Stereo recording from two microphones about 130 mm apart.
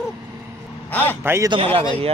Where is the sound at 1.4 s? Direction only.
45° right (ahead or behind).